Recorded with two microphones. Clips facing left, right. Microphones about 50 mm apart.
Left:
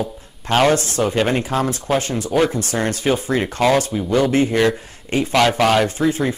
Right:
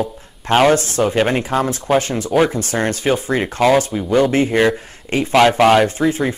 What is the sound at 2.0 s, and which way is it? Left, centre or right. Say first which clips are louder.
Speech: right 3 dB; right.